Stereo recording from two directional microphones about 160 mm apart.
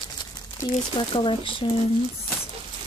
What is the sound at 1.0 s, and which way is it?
Speech, 30° left (ahead or behind).